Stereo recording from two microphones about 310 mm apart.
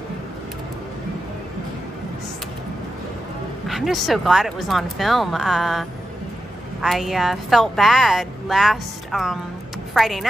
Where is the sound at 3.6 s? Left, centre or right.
Centre.